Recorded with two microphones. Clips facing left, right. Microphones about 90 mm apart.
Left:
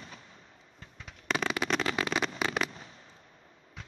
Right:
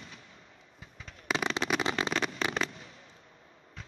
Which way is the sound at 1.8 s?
20° right (ahead or behind).